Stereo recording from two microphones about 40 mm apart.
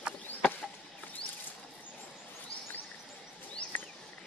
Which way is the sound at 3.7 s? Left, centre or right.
Left.